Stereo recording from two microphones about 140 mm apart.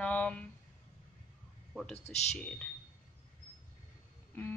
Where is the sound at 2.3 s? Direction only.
10° left (ahead or behind).